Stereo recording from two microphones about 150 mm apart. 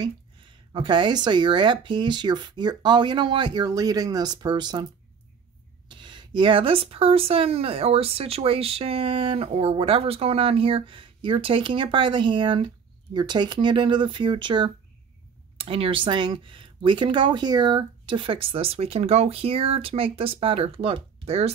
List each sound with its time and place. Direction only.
0.0 s speech: 30° right (ahead or behind)
5.9 s speech: 30° right (ahead or behind)